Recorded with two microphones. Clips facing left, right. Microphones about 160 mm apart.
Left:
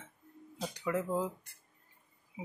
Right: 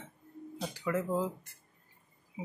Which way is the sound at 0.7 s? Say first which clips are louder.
Right 1 dB; 15° left (ahead or behind).